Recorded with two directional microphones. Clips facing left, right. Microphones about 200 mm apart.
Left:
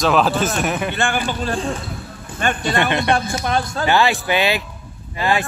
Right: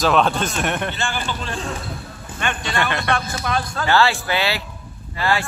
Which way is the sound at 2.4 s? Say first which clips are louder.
Left 5 dB; 40° left (ahead or behind).